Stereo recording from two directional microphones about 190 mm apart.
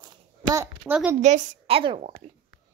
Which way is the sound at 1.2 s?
40° right (ahead or behind).